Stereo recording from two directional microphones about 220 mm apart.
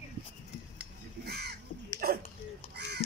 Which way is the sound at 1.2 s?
45° right (ahead or behind).